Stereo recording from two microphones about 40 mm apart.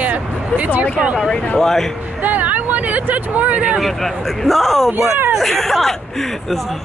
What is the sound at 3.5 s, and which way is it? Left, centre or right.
Speech, right.